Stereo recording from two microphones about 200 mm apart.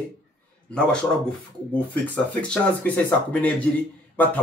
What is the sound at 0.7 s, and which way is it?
Speech, 5° left (ahead or behind).